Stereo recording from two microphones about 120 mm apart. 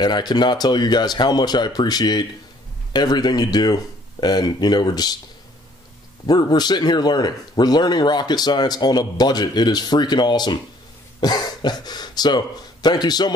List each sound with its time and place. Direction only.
0.0 s speech: 35° left (ahead or behind)
6.2 s speech: 35° left (ahead or behind)